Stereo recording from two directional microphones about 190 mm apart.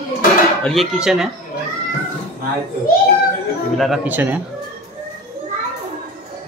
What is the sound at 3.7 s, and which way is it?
Speech, centre (ahead or behind).